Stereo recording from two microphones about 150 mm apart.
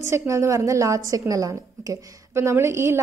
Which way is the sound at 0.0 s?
20° right (ahead or behind).